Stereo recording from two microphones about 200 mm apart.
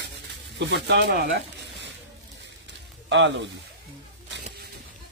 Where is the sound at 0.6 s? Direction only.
60° right (ahead or behind).